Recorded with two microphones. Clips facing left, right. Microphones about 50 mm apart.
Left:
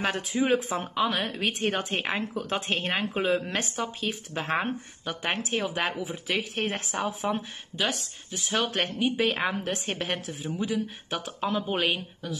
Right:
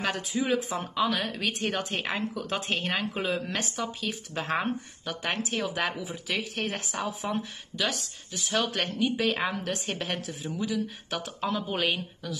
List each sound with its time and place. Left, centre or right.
0.0 s speech: left
0.7 s speech: centre
1.2 s speech: left